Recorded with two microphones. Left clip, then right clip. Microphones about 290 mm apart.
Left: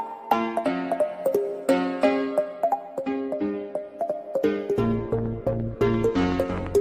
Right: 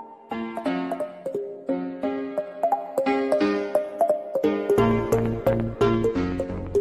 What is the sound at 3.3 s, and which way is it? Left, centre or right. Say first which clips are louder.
Music: right 6 dB; right.